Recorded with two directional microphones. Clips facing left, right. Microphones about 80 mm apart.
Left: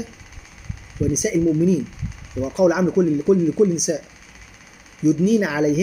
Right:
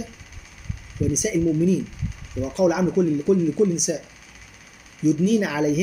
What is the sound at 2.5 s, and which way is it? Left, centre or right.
Speech, left.